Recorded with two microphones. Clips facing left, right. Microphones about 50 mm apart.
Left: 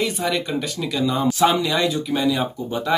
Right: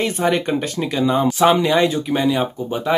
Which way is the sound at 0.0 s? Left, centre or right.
Right.